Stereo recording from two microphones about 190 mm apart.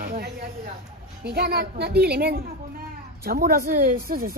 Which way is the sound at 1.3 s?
55° right (ahead or behind).